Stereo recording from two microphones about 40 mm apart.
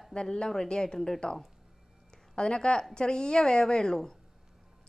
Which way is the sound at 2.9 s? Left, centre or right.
Left.